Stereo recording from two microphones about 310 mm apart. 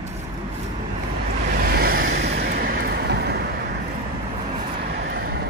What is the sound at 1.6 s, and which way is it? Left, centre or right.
Vehicle, right.